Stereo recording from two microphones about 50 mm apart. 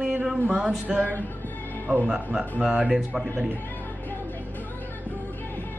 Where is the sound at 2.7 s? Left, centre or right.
Right.